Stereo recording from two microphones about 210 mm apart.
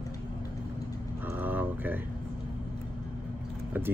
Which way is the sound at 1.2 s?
10° right (ahead or behind).